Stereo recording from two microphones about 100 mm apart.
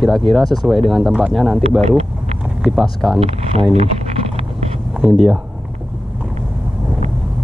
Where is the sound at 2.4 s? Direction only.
10° right (ahead or behind).